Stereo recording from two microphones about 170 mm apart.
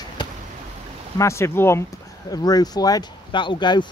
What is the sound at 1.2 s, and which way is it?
Speech, 15° left (ahead or behind).